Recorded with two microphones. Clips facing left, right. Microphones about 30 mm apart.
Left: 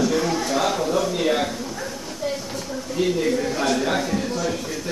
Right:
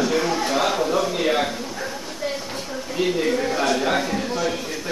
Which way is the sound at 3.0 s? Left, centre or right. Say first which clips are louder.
Even; centre.